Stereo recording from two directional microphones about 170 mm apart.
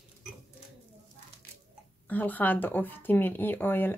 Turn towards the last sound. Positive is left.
turn(degrees=10)  # may be behind; listen again after turning